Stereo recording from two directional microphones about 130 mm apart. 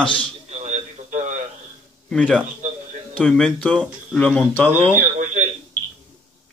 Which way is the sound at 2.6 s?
65° right (ahead or behind).